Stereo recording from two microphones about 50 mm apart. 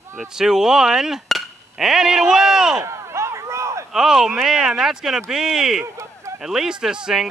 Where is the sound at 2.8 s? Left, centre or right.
Right.